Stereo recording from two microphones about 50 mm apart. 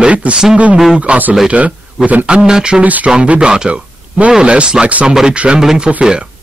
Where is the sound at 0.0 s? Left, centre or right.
Right.